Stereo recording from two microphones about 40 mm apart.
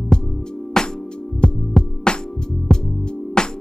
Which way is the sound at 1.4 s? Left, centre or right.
Left.